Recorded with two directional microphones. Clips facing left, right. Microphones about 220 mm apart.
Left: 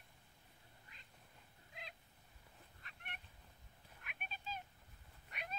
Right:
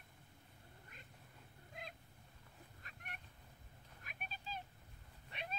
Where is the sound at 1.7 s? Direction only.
50° right (ahead or behind).